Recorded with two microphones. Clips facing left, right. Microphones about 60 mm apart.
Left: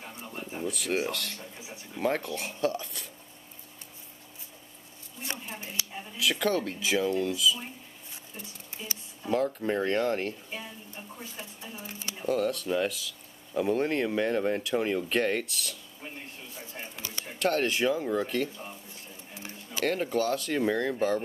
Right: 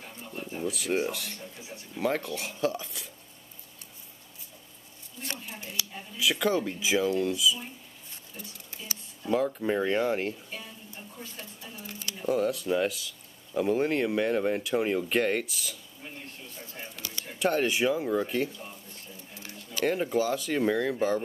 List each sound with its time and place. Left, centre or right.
0.0 s a sound: centre
0.6 s speech: centre
2.0 s speech: centre
5.5 s a sound: left
6.1 s speech: centre
9.3 s speech: centre
11.3 s speech: centre
12.3 s speech: centre
16.5 s a sound: centre
17.4 s speech: centre
19.8 s speech: centre